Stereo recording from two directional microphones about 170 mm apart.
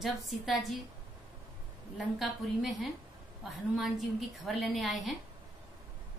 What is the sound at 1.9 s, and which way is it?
A woman's voice, centre (ahead or behind).